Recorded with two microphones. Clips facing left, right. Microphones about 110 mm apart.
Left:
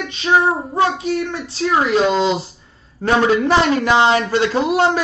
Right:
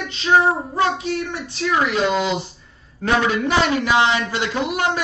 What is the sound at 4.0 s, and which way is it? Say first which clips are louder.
Speech: left 5 dB; 35° left (ahead or behind).